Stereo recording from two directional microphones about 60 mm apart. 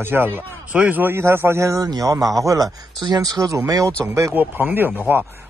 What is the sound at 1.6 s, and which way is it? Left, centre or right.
Speech, right.